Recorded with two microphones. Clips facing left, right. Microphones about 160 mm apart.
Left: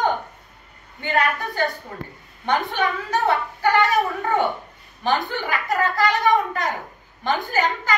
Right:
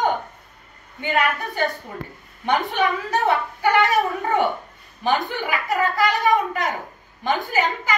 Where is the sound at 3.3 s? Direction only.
20° right (ahead or behind).